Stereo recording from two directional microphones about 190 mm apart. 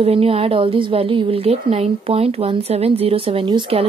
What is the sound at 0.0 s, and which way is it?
A woman's voice, 30° right (ahead or behind).